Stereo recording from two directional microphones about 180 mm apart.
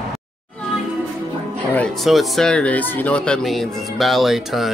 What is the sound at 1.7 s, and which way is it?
Speech, 5° left (ahead or behind).